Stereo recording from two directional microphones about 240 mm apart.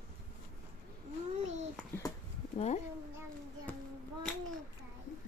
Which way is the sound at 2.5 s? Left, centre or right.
Left.